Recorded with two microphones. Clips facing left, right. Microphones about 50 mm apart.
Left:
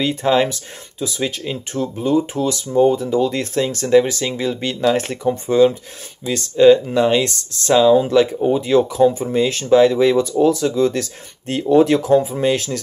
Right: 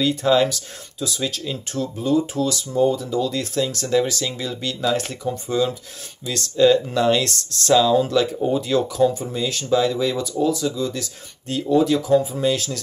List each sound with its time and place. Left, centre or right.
0.0 s speech: left